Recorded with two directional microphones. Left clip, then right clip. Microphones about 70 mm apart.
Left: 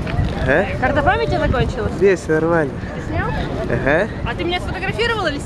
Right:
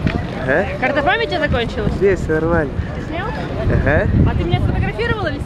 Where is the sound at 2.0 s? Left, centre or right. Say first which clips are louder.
Left 1 dB; left.